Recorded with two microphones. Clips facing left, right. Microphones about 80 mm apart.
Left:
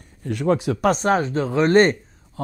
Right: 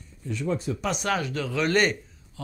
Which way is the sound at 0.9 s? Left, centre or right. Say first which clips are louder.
Left 7 dB; left.